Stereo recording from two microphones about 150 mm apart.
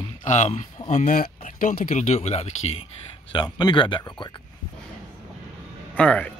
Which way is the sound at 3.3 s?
30° left (ahead or behind).